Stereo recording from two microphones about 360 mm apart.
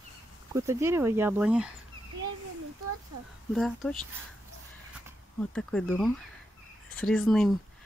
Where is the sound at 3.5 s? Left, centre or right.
Centre.